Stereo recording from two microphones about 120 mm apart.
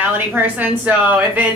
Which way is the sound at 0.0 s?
15° right (ahead or behind).